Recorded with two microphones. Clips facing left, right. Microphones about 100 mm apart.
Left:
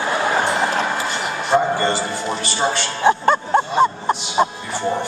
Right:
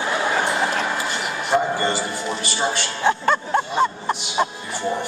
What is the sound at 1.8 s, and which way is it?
Speech, 10° right (ahead or behind).